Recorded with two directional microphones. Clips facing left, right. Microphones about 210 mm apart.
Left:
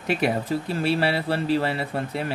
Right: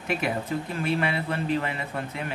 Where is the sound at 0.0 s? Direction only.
35° left (ahead or behind).